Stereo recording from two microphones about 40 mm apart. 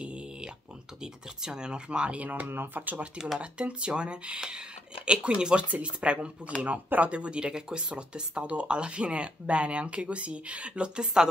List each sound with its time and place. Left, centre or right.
0.0 s a sound: right
1.0 s speech: centre; by 2.5 s right
2.5 s speech: right
3.3 s speech: right